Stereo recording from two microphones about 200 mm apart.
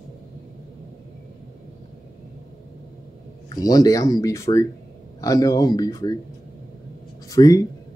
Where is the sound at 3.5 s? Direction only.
20° left (ahead or behind).